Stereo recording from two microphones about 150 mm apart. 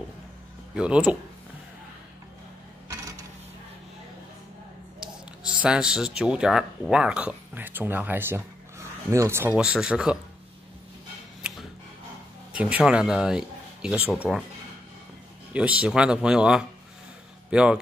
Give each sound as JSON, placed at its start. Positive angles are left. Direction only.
{"t": 0.7, "sound": "speech", "side_deg": -5}
{"t": 5.0, "sound": "speech", "side_deg": -5}
{"t": 9.6, "sound": "speech", "side_deg": -5}
{"t": 12.5, "sound": "speech", "side_deg": -10}
{"t": 15.5, "sound": "speech", "side_deg": -10}